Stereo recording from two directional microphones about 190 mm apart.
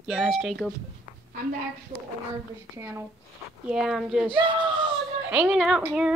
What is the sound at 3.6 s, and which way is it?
Speech, 5° right (ahead or behind).